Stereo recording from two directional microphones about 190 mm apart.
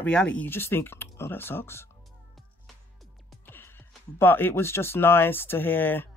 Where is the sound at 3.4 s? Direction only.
10° left (ahead or behind).